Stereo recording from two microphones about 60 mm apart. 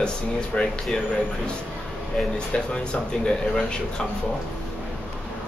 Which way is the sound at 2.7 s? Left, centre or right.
Centre.